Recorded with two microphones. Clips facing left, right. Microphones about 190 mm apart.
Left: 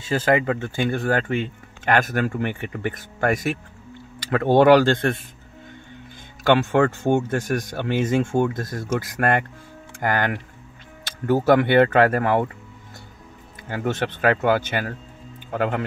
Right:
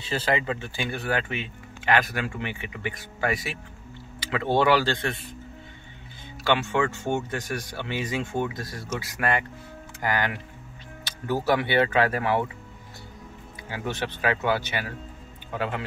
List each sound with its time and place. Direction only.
0.0 s speech: 45° left (ahead or behind)
6.4 s speech: 50° left (ahead or behind)
13.7 s speech: 50° left (ahead or behind)